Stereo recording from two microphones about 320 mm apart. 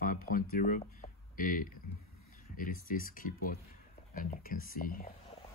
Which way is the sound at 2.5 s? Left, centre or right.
Left.